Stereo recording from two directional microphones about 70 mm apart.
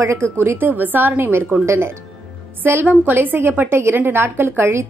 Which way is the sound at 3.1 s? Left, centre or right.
Right.